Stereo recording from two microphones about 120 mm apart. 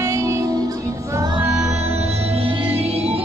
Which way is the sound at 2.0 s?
60° right (ahead or behind).